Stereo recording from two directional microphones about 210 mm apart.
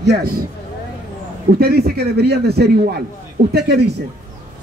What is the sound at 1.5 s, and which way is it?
Speech, 50° right (ahead or behind).